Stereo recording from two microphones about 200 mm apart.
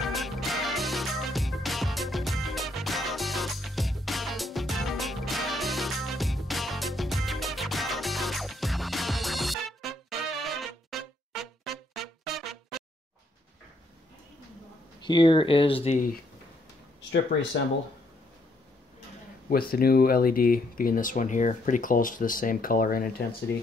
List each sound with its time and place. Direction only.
0.0 s music: centre (ahead or behind)
15.0 s speech: 25° left (ahead or behind); by 16.2 s 40° left (ahead or behind)
19.5 s speech: 50° left (ahead or behind)